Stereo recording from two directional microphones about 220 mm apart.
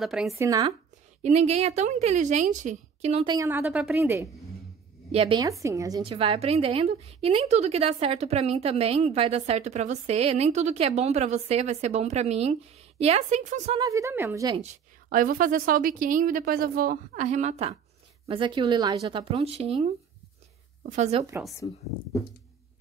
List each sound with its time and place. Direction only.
0.0 s speech: centre (ahead or behind)
0.3 s a woman's voice: 15° right (ahead or behind)
1.2 s a woman's voice: 30° right (ahead or behind)
3.3 s a woman's voice: 10° right (ahead or behind)
5.1 s a woman's voice: 25° right (ahead or behind)
13.7 s a woman's voice: 15° right (ahead or behind)
14.6 s a woman's voice: 35° right (ahead or behind)